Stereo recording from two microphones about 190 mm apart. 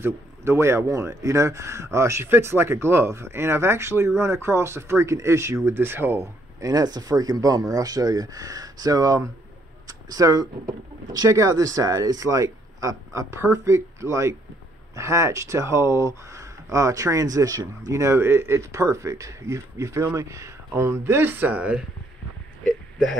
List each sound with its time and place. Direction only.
0.0 s a man's voice: 15° right (ahead or behind)